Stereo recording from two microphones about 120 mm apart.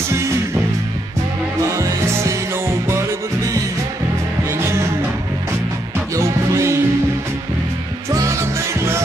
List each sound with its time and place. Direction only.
1.8 s music: 25° right (ahead or behind)
4.5 s music: 25° right (ahead or behind)
6.1 s music: 25° right (ahead or behind)
8.1 s music: 25° right (ahead or behind)